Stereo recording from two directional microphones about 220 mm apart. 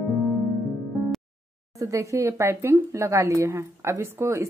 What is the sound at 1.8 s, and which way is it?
Speech, 15° right (ahead or behind).